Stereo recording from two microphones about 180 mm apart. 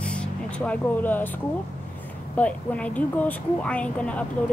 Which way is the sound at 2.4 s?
10° left (ahead or behind).